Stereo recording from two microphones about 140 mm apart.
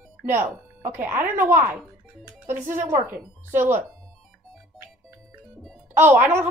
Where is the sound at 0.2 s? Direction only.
15° right (ahead or behind).